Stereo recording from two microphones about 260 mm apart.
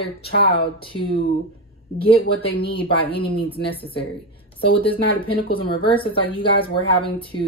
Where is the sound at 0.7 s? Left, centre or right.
Centre.